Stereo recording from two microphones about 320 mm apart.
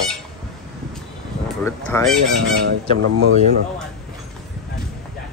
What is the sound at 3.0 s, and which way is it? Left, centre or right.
Speech, right.